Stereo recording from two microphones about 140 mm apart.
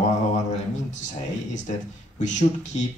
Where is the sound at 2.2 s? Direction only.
60° left (ahead or behind).